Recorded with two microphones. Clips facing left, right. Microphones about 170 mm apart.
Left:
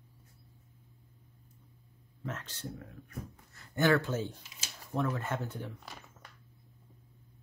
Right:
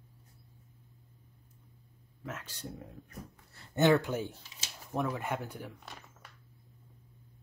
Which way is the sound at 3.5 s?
20° right (ahead or behind).